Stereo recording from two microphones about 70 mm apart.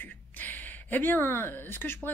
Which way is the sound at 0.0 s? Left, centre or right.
Left.